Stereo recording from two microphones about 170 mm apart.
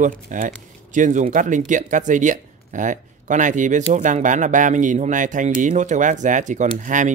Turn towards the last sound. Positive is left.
turn(degrees=-45)  # may be behind; listen again after turning